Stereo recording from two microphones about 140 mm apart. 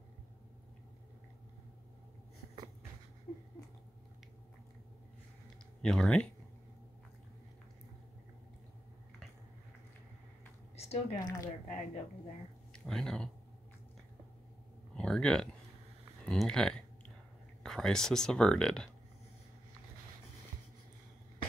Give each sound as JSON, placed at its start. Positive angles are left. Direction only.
{"t": 5.8, "sound": "speech", "side_deg": 5}
{"t": 10.8, "sound": "a sound", "side_deg": 50}
{"t": 11.1, "sound": "speech", "side_deg": 25}
{"t": 11.6, "sound": "speech", "side_deg": 50}
{"t": 12.7, "sound": "speech", "side_deg": 5}
{"t": 15.0, "sound": "a sound", "side_deg": 5}
{"t": 17.6, "sound": "speech", "side_deg": 5}